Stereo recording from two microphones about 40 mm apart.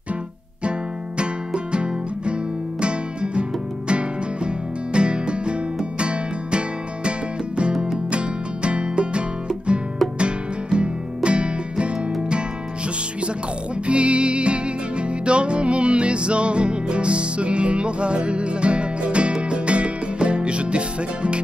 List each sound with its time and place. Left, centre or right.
0.7 s music: right
13.8 s music: right